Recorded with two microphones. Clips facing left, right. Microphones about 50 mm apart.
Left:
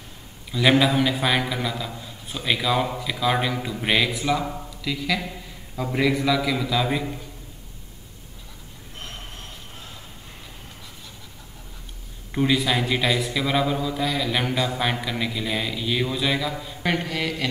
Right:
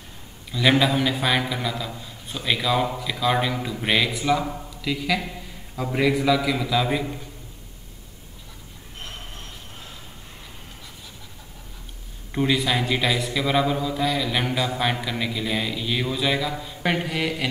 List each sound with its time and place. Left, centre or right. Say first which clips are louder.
0.5 s a man's voice: left 1 dB; centre
12.3 s a man's voice: left 1 dB; centre